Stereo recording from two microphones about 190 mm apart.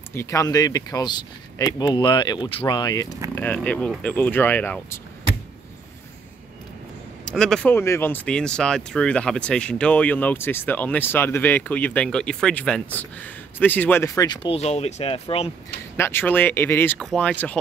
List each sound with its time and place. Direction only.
0.1 s speech: 15° left (ahead or behind)
3.3 s speech: 10° left (ahead or behind)
7.2 s speech: 5° left (ahead or behind); by 15.5 s 30° left (ahead or behind)
16.0 s speech: 10° left (ahead or behind)